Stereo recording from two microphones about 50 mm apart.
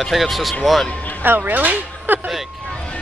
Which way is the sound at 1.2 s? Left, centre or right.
Right.